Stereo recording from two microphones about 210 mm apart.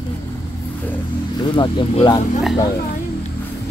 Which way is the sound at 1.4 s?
25° left (ahead or behind).